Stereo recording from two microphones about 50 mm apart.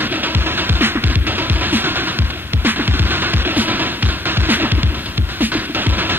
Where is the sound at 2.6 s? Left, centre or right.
Right.